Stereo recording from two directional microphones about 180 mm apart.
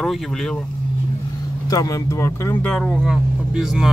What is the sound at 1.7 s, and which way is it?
Speech, 20° left (ahead or behind).